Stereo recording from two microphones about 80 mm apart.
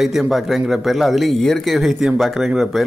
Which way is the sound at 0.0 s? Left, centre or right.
Centre.